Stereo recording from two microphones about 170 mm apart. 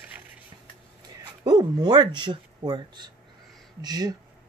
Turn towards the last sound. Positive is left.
turn(degrees=-25)  # may be behind; listen again after turning